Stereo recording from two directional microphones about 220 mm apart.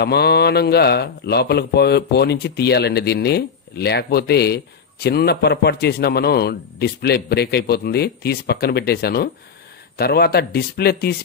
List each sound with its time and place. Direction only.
0.0 s speech: 45° left (ahead or behind)